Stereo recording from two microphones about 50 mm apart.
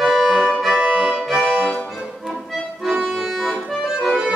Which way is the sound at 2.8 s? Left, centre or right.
Centre.